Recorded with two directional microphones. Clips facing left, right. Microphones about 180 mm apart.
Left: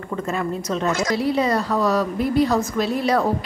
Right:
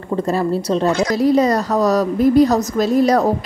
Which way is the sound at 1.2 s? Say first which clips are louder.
Right 8 dB; 40° right (ahead or behind).